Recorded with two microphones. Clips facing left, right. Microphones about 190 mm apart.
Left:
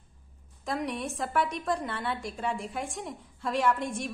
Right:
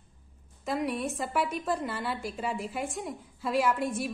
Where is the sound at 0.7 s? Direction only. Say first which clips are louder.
Right 2 dB; centre (ahead or behind).